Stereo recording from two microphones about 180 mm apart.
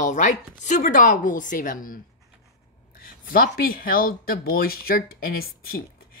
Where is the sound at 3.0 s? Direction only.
55° left (ahead or behind).